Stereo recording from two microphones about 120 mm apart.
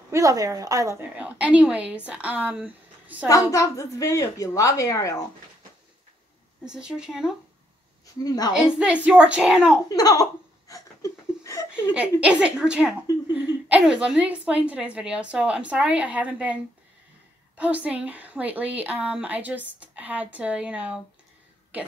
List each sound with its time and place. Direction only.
0.1 s speech: 30° right (ahead or behind)
1.1 s a woman's voice: 10° right (ahead or behind)
3.3 s a woman's voice: 30° left (ahead or behind)
6.6 s speech: 5° right (ahead or behind)
8.2 s a woman's voice: 30° left (ahead or behind)
8.5 s a woman's voice: 5° right (ahead or behind)
9.8 s a woman's voice: 30° left (ahead or behind)
10.7 s a sound: 25° left (ahead or behind)
11.9 s a woman's voice: 10° right (ahead or behind)
17.6 s a woman's voice: 10° right (ahead or behind)